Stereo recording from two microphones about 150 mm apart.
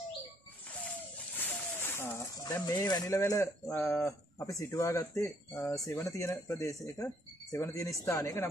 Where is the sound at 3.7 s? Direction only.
20° left (ahead or behind).